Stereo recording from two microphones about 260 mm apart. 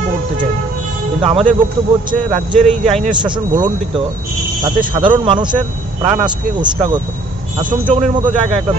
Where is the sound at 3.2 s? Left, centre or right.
Centre.